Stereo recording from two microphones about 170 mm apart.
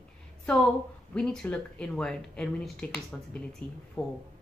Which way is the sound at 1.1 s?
5° left (ahead or behind).